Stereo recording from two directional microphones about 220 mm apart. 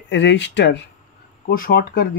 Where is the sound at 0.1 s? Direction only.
55° left (ahead or behind).